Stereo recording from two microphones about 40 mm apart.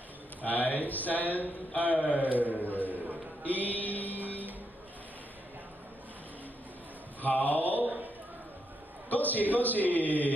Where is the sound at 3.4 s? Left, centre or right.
Left.